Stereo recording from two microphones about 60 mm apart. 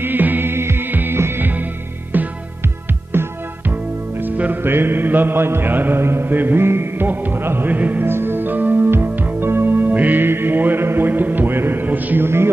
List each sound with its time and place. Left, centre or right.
0.0 s music: right
8.1 s music: right